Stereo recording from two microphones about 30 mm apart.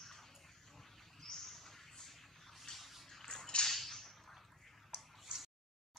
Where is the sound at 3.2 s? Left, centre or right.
Centre.